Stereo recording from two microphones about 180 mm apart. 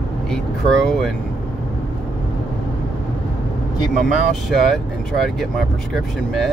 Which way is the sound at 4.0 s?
Centre (ahead or behind).